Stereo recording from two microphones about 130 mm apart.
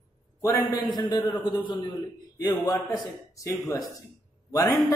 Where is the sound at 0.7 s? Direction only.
40° left (ahead or behind).